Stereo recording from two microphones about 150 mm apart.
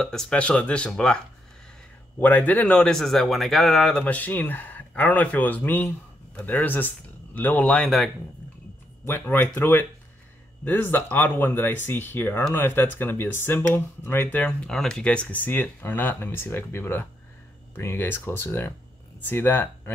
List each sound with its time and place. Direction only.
0.0 s speech: 5° left (ahead or behind)
4.0 s speech: 10° left (ahead or behind)
9.0 s speech: 15° left (ahead or behind)